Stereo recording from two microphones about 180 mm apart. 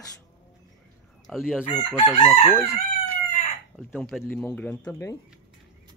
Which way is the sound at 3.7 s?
Centre (ahead or behind).